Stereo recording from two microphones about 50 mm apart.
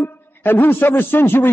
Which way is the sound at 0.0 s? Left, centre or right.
Left.